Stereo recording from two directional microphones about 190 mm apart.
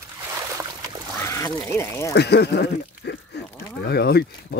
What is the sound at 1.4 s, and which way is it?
Speech, 15° left (ahead or behind).